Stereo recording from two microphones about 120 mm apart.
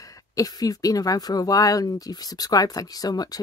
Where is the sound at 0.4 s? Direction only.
30° left (ahead or behind).